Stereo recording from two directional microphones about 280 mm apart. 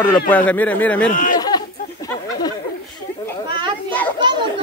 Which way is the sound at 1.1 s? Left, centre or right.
Left.